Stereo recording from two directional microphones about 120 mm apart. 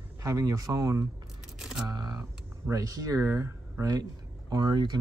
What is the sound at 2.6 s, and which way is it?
Speech, 30° right (ahead or behind).